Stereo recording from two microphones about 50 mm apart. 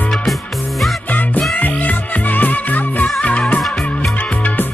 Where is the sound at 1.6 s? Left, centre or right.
Left.